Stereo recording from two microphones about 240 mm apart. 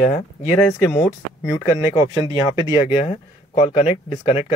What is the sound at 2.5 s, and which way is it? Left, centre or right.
Speech, centre.